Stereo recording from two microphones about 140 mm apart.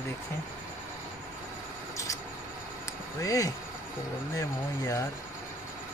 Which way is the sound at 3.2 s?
25° left (ahead or behind).